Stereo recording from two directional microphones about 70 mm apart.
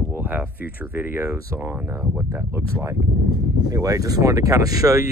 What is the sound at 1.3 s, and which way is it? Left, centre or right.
Speech, right.